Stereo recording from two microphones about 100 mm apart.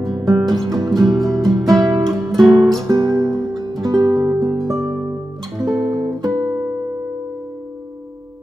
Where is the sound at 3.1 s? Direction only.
35° right (ahead or behind).